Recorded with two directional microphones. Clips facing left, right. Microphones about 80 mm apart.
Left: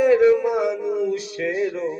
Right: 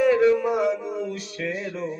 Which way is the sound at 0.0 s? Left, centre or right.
Centre.